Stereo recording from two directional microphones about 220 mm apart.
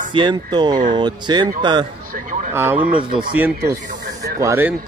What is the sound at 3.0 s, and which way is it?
Speech, 20° right (ahead or behind).